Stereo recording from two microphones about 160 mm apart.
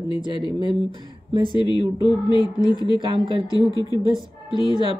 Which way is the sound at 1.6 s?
30° left (ahead or behind).